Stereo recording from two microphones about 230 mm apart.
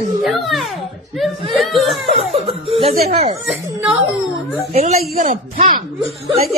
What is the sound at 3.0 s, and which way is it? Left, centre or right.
Speech, right.